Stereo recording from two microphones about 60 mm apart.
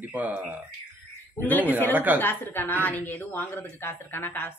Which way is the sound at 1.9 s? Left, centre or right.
Right.